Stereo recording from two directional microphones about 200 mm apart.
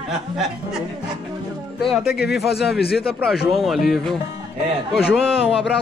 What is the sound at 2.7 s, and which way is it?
Speech, 50° left (ahead or behind).